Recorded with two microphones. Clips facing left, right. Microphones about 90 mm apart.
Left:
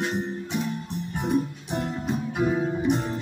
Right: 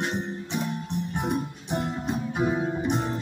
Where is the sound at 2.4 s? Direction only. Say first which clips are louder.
Left 2 dB; 15° right (ahead or behind).